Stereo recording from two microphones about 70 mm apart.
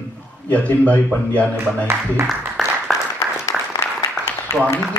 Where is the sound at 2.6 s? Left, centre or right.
Centre.